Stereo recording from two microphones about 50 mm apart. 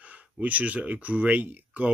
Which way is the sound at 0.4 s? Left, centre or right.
Right.